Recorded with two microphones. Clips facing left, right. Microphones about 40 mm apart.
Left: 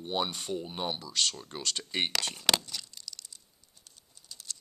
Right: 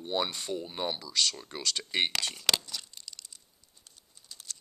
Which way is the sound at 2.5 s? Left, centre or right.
Centre.